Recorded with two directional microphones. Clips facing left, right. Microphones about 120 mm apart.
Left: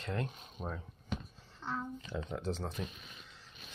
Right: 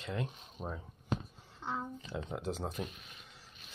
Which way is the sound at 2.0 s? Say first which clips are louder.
Left 1 dB; 5° right (ahead or behind).